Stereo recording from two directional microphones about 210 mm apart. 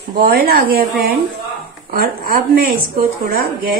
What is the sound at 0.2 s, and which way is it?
Speech, 45° right (ahead or behind).